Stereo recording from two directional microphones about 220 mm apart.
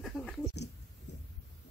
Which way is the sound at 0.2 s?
5° left (ahead or behind).